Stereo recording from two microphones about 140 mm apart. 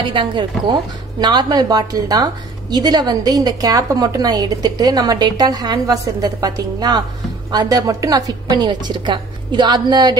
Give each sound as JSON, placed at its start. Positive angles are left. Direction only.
{"t": 0.0, "sound": "a woman's voice", "side_deg": -35}